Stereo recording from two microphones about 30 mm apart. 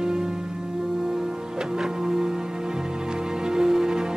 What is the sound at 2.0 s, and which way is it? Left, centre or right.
Music, right.